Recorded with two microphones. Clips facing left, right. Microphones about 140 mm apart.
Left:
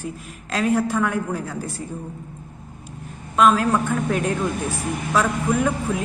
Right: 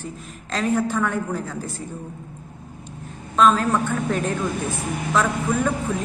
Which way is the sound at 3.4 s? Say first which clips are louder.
Left 1 dB; 10° left (ahead or behind).